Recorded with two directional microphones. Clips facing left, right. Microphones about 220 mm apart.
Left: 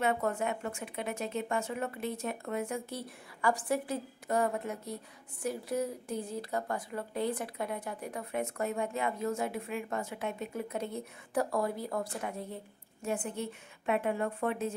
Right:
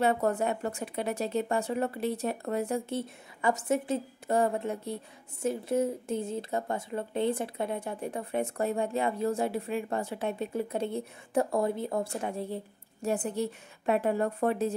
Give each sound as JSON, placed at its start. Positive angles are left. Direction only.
{"t": 0.0, "sound": "speech", "side_deg": -35}